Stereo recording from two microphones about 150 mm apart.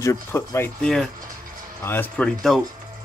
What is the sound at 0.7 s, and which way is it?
Speech, 5° left (ahead or behind).